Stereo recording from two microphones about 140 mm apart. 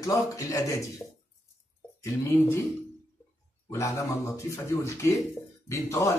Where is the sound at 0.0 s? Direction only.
25° left (ahead or behind).